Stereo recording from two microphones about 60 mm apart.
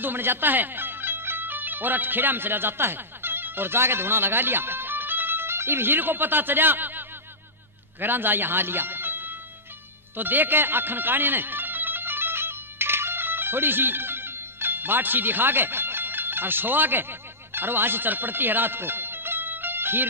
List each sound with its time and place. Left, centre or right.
0.0 s speech: right
10.1 s music: right